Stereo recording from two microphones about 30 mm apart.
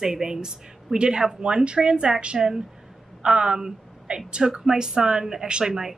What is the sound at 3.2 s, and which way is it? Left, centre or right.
A woman's voice, right.